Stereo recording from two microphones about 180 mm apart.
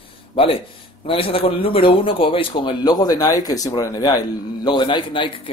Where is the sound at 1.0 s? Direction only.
30° left (ahead or behind).